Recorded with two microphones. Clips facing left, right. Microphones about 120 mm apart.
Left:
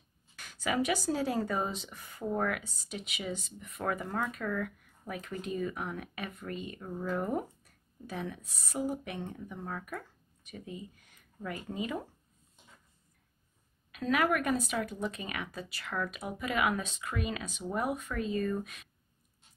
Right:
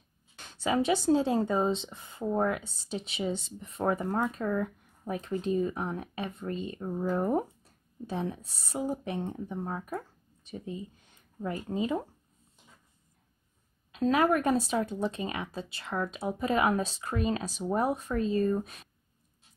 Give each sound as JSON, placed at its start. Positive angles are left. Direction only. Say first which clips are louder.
{"t": 0.4, "sound": "speech", "louder": "right 3 dB", "side_deg": -30}
{"t": 13.9, "sound": "speech", "louder": "right 4 dB", "side_deg": -30}